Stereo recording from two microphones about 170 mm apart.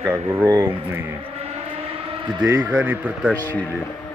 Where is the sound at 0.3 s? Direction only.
15° right (ahead or behind).